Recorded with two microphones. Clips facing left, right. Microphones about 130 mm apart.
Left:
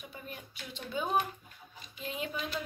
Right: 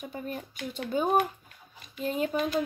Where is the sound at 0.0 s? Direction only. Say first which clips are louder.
Right 9 dB; 45° right (ahead or behind).